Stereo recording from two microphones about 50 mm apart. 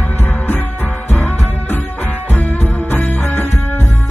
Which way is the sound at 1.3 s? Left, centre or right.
Left.